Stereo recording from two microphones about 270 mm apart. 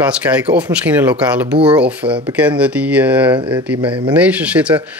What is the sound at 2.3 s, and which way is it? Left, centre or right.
Speech, centre.